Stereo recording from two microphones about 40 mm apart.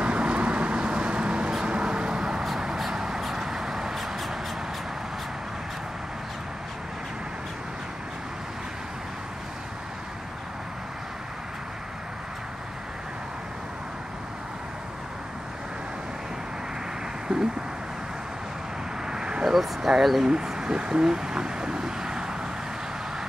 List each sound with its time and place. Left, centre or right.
0.0 s vehicle: right; by 4.4 s centre
19.0 s vehicle: centre
19.5 s speech: centre
20.2 s vehicle: centre